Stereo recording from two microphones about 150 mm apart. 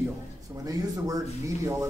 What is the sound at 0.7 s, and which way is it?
Speech, 25° right (ahead or behind).